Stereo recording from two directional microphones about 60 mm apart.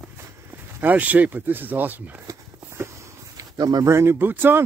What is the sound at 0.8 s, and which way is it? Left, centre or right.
Speech, right.